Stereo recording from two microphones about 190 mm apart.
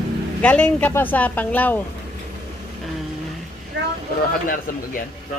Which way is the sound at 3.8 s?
75° right (ahead or behind).